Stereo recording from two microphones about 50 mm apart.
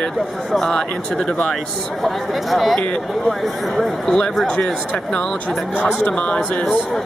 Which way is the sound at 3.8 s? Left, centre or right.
Centre.